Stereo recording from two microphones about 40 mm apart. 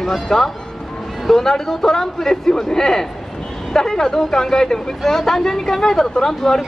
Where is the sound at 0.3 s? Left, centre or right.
Centre.